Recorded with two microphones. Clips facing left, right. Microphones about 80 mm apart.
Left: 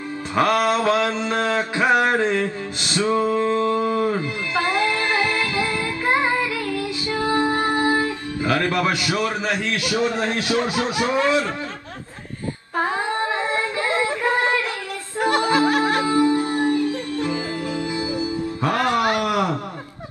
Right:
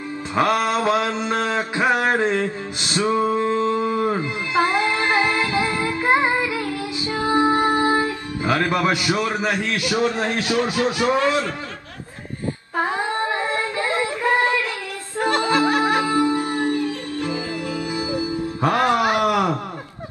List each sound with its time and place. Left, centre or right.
0.4 s mantra: right
10.5 s speech: left
12.9 s music: left
15.8 s music: right
17.2 s music: left
17.8 s music: right